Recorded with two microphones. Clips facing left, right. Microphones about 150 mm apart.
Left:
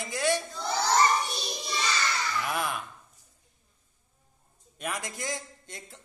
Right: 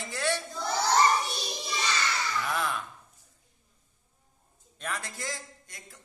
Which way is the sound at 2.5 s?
15° left (ahead or behind).